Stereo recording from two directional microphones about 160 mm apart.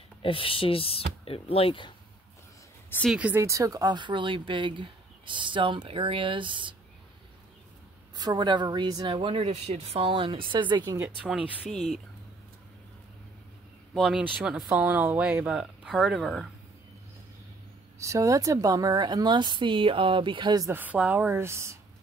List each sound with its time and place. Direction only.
0.2 s speech: 35° left (ahead or behind)
3.1 s speech: 10° right (ahead or behind); by 6.7 s 30° right (ahead or behind)
8.2 s speech: 25° right (ahead or behind)
11.2 s speech: 5° right (ahead or behind)
13.9 s speech: 5° right (ahead or behind)
17.9 s speech: 20° right (ahead or behind)
20.7 s speech: 10° right (ahead or behind)